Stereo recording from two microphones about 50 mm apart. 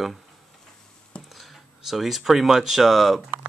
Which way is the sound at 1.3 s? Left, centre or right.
Centre.